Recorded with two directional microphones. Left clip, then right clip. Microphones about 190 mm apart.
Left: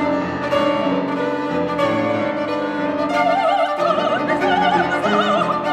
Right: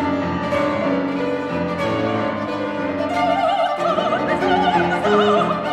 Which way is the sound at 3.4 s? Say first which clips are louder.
Left 1 dB; 15° left (ahead or behind).